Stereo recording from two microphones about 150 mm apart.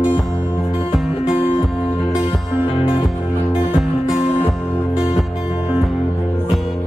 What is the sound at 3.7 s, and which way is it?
Music, 5° right (ahead or behind).